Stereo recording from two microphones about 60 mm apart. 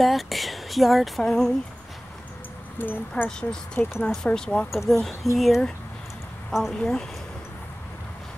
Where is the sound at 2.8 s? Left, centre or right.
Left.